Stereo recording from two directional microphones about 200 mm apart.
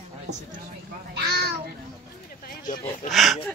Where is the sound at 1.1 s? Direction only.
55° right (ahead or behind).